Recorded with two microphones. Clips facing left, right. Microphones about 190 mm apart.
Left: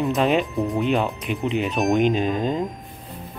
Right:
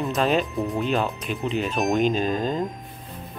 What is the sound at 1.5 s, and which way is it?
Speech, 20° left (ahead or behind).